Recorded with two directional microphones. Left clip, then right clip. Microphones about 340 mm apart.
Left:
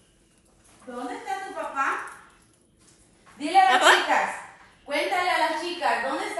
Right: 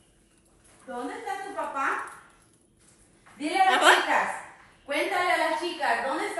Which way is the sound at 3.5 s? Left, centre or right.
Centre.